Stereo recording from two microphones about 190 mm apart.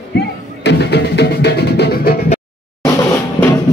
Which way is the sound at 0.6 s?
60° left (ahead or behind).